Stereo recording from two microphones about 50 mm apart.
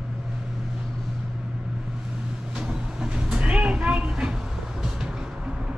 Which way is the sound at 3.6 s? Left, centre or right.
Right.